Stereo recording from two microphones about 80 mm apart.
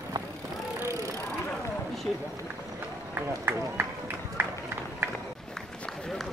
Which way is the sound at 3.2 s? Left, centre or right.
Right.